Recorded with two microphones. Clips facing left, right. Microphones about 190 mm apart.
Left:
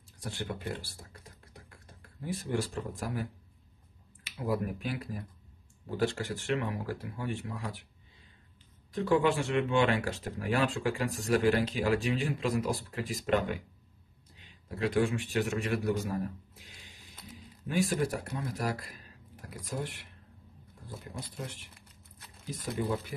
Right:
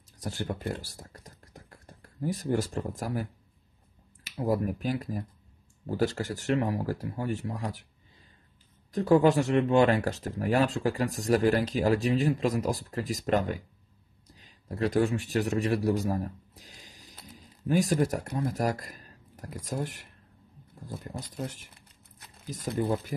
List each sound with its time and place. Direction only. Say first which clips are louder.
0.2 s speech: right 4 dB; 40° right (ahead or behind)
8.9 s a man's voice: right 5 dB; 40° right (ahead or behind)